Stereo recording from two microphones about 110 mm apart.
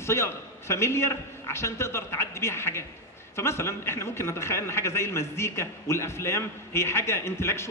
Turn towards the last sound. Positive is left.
turn(degrees=25)  # may be behind; listen again after turning